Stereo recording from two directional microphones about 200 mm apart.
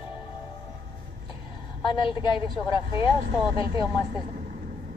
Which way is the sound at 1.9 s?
25° left (ahead or behind).